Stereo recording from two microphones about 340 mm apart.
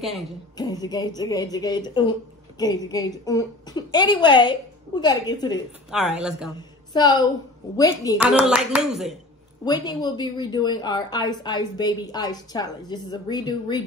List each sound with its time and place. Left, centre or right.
0.6 s a woman's voice: centre
5.9 s speech: centre
6.9 s a woman's voice: centre
8.2 s speech: centre
9.7 s a woman's voice: centre